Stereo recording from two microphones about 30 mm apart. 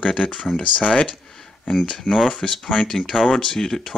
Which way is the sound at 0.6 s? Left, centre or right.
Left.